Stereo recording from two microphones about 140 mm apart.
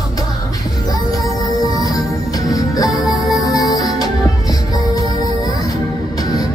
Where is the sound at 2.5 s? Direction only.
25° left (ahead or behind).